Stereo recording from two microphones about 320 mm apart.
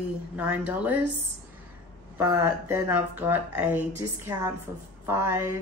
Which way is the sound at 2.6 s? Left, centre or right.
Centre.